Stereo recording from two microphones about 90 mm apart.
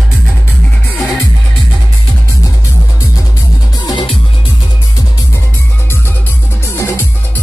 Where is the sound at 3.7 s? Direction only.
50° left (ahead or behind).